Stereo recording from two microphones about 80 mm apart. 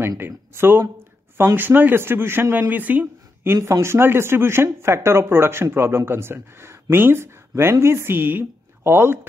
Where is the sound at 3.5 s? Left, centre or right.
Right.